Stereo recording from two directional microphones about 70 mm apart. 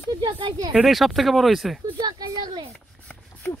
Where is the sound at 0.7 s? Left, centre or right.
Centre.